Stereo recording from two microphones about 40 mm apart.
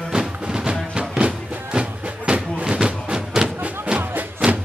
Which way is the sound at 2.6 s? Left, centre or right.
Right.